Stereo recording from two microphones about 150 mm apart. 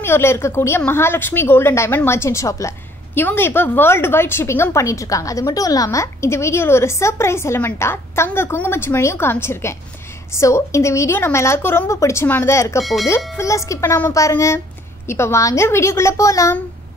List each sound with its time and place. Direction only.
0.0 s a woman's voice: 15° left (ahead or behind)